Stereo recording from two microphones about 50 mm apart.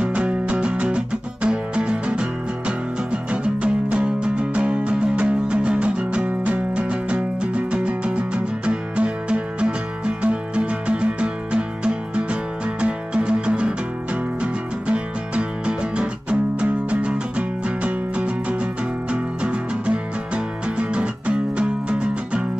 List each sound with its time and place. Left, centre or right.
0.0 s music: right